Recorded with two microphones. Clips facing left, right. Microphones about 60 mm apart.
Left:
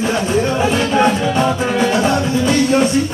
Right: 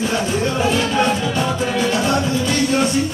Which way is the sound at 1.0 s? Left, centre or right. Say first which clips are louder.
Left 4 dB; left.